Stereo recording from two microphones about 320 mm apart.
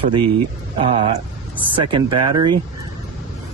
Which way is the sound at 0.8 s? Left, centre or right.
Centre.